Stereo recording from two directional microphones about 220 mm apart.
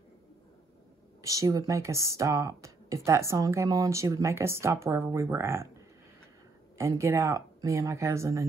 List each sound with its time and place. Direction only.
1.2 s speech: 15° right (ahead or behind)
6.8 s speech: 15° right (ahead or behind)